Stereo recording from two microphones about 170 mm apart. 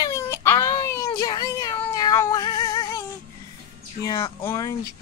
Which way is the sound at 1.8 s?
25° left (ahead or behind).